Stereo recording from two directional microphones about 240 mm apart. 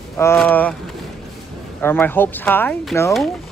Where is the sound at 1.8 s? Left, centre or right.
Centre.